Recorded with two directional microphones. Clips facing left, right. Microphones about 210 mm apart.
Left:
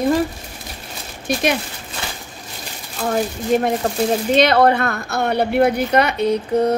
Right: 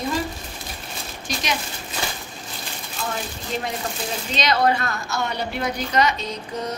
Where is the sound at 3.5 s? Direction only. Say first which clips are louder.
Left 10 dB; 55° left (ahead or behind).